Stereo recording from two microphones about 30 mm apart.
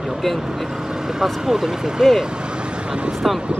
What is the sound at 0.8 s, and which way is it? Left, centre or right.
Vehicle, right.